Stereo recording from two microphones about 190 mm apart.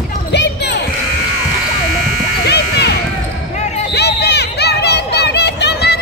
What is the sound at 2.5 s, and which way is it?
Music, 60° left (ahead or behind).